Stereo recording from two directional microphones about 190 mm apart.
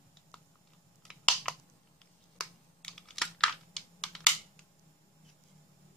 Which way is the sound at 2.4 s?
Centre (ahead or behind).